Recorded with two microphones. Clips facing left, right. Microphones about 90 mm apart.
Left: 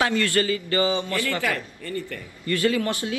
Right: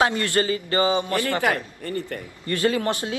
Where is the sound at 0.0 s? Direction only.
25° right (ahead or behind).